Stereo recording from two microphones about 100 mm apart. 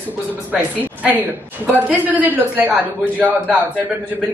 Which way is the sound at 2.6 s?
15° right (ahead or behind).